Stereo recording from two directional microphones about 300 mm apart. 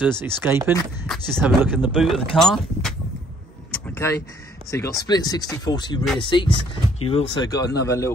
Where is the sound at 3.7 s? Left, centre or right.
Centre.